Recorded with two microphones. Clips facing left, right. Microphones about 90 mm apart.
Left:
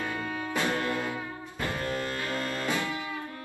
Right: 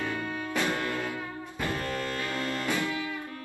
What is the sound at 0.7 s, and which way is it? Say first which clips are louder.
Music: left 1 dB; 20° left (ahead or behind).